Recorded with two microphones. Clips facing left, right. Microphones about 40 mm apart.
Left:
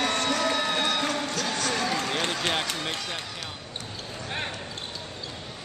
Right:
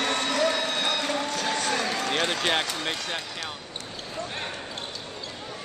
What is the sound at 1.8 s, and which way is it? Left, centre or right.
Basketball bounce, centre.